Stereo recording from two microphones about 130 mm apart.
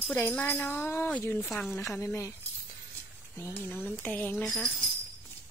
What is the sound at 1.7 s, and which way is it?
Speech, 25° left (ahead or behind).